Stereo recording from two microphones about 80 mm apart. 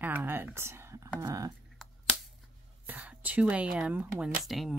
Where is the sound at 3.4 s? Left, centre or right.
Centre.